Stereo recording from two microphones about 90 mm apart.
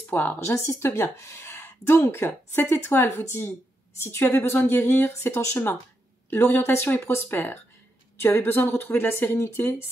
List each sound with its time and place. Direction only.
0.0 s a woman's voice: 20° left (ahead or behind)